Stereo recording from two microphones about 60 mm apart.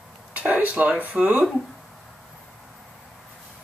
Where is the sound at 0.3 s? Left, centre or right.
Right.